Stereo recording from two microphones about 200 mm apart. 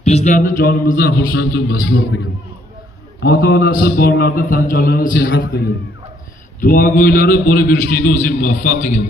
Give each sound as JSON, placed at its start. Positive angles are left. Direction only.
{"t": 0.0, "sound": "mantra", "side_deg": 35}
{"t": 6.6, "sound": "mantra", "side_deg": 45}